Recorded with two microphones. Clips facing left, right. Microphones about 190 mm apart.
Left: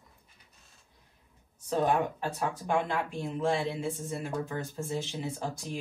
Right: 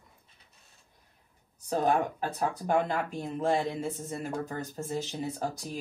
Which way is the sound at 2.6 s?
40° right (ahead or behind).